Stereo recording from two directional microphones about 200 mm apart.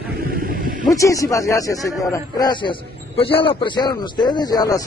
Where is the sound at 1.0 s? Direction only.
15° left (ahead or behind).